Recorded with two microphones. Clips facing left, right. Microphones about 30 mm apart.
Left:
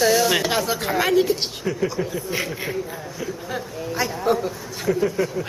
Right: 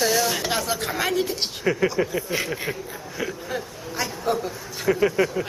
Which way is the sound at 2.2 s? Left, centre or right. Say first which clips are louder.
Even; centre.